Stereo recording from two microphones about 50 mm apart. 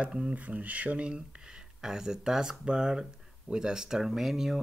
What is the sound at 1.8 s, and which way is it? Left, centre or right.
Speech, centre.